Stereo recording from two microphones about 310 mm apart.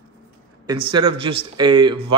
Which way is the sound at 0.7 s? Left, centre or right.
Centre.